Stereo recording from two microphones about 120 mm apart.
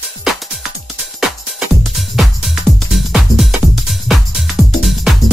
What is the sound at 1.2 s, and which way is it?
Music, centre (ahead or behind).